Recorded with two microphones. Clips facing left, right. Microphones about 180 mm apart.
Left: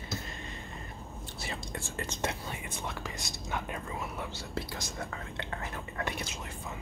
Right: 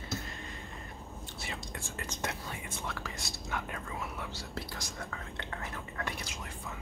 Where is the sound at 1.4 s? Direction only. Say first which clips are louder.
Left 3 dB; 30° left (ahead or behind).